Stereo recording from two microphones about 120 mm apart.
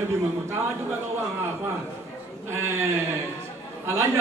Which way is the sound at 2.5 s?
20° right (ahead or behind).